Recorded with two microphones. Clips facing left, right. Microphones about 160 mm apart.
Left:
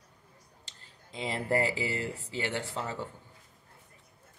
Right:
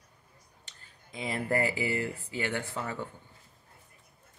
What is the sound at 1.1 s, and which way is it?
Speech, 30° left (ahead or behind).